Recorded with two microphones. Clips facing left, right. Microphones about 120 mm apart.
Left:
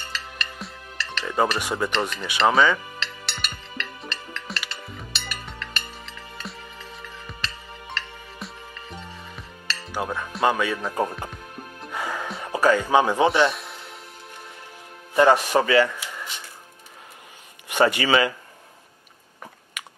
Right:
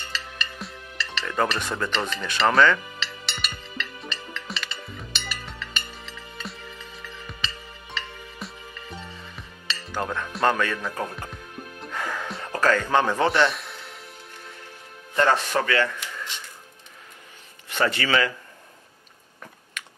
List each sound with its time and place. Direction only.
0.1 s music: centre (ahead or behind)
1.2 s speech: 15° left (ahead or behind)
3.0 s music: centre (ahead or behind)
10.8 s speech: 25° left (ahead or behind)
11.9 s music: 10° left (ahead or behind)
12.4 s speech: 10° left (ahead or behind)
15.1 s speech: 15° left (ahead or behind)
17.6 s speech: 15° left (ahead or behind)
19.8 s computer keyboard: 10° left (ahead or behind)